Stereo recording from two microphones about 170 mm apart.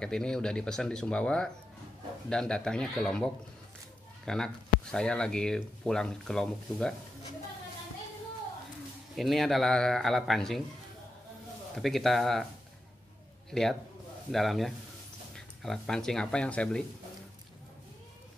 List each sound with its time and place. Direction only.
0.0 s speech: 5° left (ahead or behind)
4.3 s speech: 5° left (ahead or behind)
9.1 s speech: centre (ahead or behind)
11.7 s speech: centre (ahead or behind)
13.5 s a man's voice: 5° left (ahead or behind)